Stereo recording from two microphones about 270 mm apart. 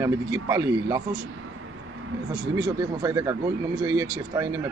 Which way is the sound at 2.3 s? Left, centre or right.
Centre.